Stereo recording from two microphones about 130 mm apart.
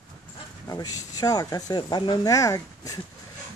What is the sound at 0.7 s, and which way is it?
Speech, 30° left (ahead or behind).